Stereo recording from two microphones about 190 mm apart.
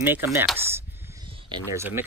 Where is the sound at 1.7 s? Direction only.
10° right (ahead or behind).